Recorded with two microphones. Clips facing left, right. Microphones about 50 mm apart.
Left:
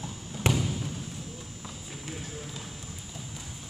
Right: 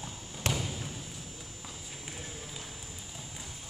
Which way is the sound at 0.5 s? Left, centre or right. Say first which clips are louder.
Left 5 dB; centre.